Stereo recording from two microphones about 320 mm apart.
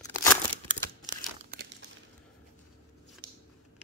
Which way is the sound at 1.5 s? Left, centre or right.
Right.